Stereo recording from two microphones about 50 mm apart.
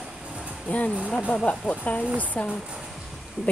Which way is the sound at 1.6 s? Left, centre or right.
Right.